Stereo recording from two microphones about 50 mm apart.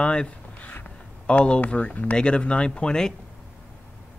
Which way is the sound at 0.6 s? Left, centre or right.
Left.